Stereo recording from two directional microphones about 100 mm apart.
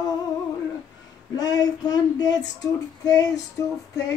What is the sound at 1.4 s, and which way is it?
Female singing, 40° left (ahead or behind).